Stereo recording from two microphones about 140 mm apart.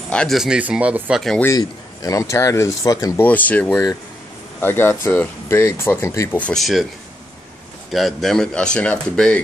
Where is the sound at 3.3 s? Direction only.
10° left (ahead or behind).